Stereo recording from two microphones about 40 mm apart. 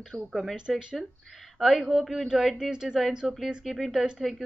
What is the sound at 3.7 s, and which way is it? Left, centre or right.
Speech, centre.